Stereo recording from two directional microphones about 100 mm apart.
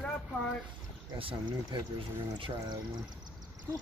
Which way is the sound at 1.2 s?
60° right (ahead or behind).